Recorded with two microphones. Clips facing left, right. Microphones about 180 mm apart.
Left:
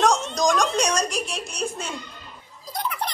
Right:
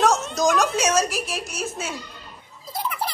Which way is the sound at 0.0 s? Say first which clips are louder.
Right 1 dB; 5° right (ahead or behind).